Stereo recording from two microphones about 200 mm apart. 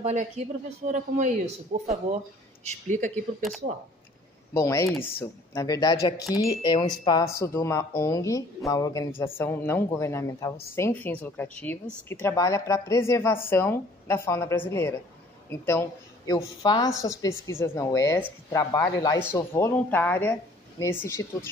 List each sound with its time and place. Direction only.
0.0 s a man's voice: 35° right (ahead or behind)
4.6 s a woman's voice: 15° left (ahead or behind)